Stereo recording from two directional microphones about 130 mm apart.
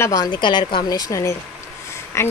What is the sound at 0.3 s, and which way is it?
A woman's voice, 35° left (ahead or behind).